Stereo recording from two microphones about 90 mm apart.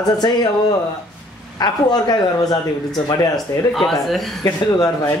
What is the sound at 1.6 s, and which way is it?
Speech, 50° left (ahead or behind).